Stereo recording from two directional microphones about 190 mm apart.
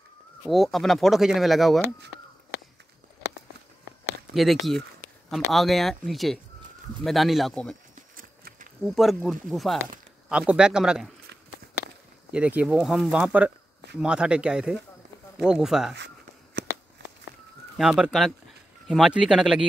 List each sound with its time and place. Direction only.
0.5 s speech: centre (ahead or behind)
4.3 s speech: centre (ahead or behind)
7.9 s a sound: 45° right (ahead or behind)
8.8 s speech: centre (ahead or behind)
12.3 s speech: 5° right (ahead or behind)
16.6 s a sound: 70° right (ahead or behind)
17.7 s speech: centre (ahead or behind)